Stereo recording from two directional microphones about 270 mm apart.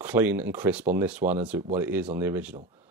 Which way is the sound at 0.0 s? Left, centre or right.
Centre.